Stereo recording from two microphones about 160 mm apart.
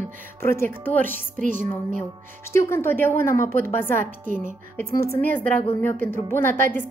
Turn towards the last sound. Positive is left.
turn(degrees=15)  # may be behind; listen again after turning